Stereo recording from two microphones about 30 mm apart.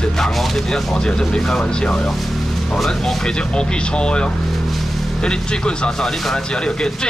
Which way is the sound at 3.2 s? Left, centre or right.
Left.